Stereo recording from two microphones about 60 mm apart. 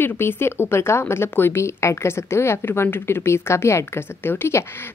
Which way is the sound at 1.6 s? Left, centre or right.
Left.